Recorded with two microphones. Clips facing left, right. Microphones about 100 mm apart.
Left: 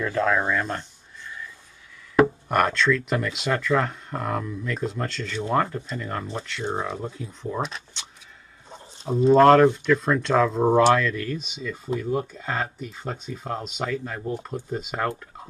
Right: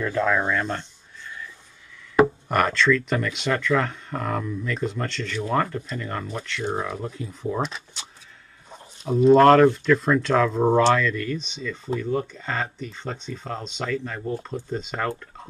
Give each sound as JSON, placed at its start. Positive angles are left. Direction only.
{"t": 0.0, "sound": "a sound", "side_deg": 0}
{"t": 2.1, "sound": "speech", "side_deg": 0}
{"t": 9.3, "sound": "speech", "side_deg": 0}